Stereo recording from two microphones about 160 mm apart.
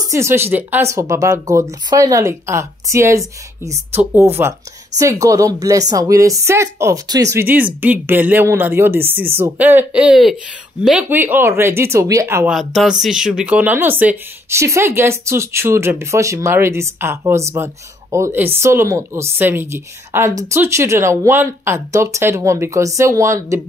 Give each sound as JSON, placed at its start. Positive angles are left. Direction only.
{"t": 0.1, "sound": "speech", "side_deg": -15}
{"t": 12.4, "sound": "speech", "side_deg": 0}